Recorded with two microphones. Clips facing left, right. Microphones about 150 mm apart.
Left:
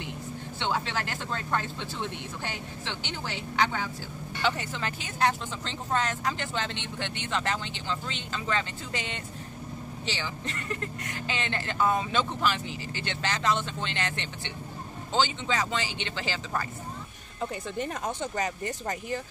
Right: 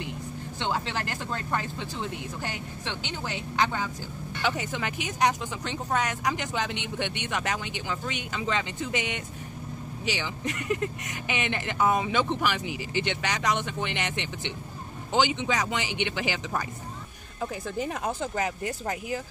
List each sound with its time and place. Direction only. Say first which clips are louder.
1.5 s speech: left 1 dB; 15° right (ahead or behind)
4.4 s speech: even; 10° right (ahead or behind)
17.4 s speech: right 1 dB; 5° right (ahead or behind)